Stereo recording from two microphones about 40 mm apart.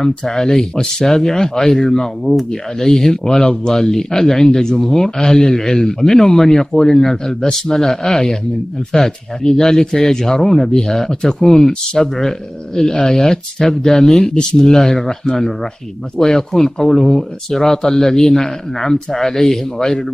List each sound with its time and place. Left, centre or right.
0.0 s speech: centre